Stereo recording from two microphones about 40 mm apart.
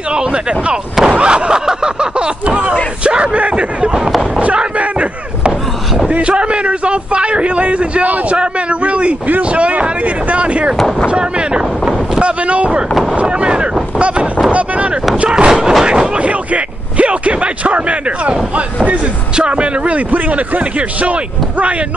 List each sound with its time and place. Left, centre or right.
0.1 s a man's voice: right
2.4 s a man's voice: right
6.1 s a man's voice: right
8.0 s a man's voice: right
8.4 s a man's voice: right
15.2 s speech: right
15.8 s artillery fire: right
16.3 s speech: right
19.3 s a man's voice: right
20.1 s a man's voice: right